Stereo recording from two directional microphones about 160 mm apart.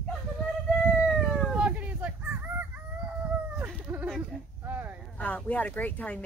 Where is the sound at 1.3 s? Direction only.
5° right (ahead or behind).